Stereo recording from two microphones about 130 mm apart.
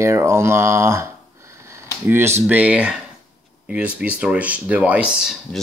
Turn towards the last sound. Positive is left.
turn(degrees=-10)  # may be behind; listen again after turning